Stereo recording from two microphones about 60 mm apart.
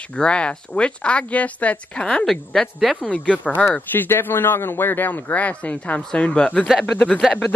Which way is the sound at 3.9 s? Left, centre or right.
Left.